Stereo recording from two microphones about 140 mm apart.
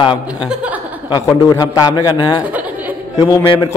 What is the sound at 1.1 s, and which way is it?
A man's voice, 25° left (ahead or behind).